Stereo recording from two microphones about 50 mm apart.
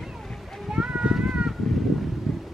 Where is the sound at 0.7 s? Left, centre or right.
Right.